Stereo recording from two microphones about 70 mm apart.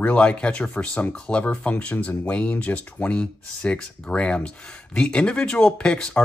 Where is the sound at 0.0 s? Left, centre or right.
Centre.